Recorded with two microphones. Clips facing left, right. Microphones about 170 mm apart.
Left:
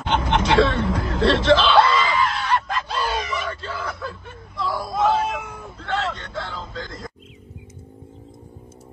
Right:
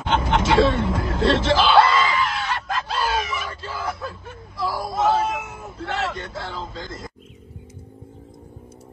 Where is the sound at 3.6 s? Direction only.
25° right (ahead or behind).